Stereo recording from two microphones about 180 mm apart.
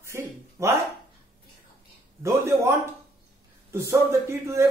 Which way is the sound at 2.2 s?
15° right (ahead or behind).